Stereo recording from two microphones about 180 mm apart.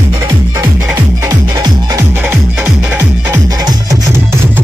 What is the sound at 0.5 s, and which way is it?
Music, 15° right (ahead or behind).